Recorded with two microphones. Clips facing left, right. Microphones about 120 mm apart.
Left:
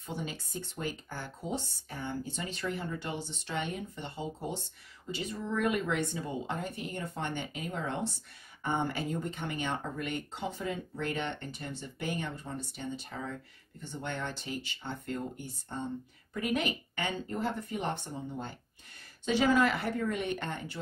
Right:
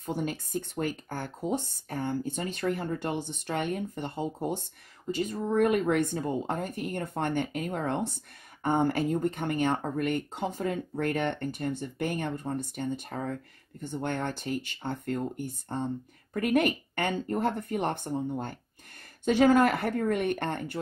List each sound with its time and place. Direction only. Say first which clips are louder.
0.0 s speech: right 7 dB; 50° right (ahead or behind)